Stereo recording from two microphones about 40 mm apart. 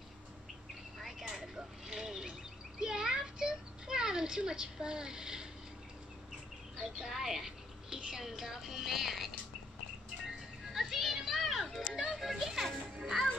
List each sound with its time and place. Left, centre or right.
1.3 s a sound: centre
6.8 s speech: centre
10.7 s music: centre
12.2 s a child's voice: centre